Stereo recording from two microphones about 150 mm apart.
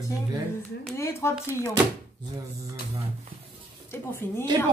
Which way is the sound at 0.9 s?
20° left (ahead or behind).